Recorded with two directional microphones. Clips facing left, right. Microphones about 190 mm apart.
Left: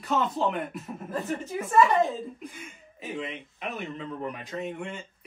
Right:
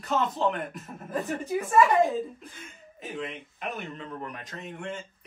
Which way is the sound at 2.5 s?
Centre (ahead or behind).